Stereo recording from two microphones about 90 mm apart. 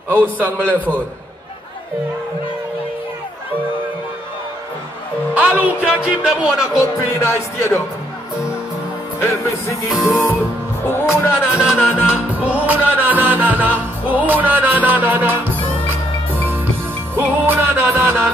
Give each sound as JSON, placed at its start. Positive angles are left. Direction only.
{"t": 0.1, "sound": "music", "side_deg": -20}
{"t": 5.3, "sound": "music", "side_deg": -15}
{"t": 5.9, "sound": "speech", "side_deg": -10}
{"t": 6.8, "sound": "music", "side_deg": 35}
{"t": 9.2, "sound": "music", "side_deg": 35}
{"t": 9.8, "sound": "music", "side_deg": 0}
{"t": 10.9, "sound": "speech", "side_deg": 25}
{"t": 11.5, "sound": "speech", "side_deg": -5}
{"t": 12.4, "sound": "music", "side_deg": -15}
{"t": 17.1, "sound": "music", "side_deg": -25}